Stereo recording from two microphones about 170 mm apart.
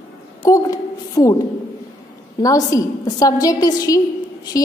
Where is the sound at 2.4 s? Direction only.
20° left (ahead or behind).